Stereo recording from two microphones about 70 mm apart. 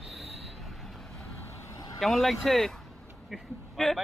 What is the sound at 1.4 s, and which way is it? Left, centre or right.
Vehicle, left.